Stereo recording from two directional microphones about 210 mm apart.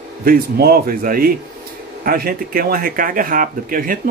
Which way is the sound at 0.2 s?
45° right (ahead or behind).